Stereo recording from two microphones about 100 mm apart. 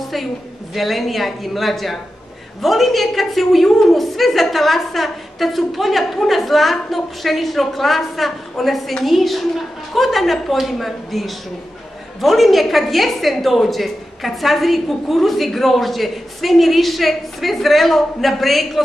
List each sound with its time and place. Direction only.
0.7 s a woman's voice: centre (ahead or behind)